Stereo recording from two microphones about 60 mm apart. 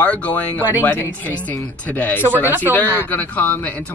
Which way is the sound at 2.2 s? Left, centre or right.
Right.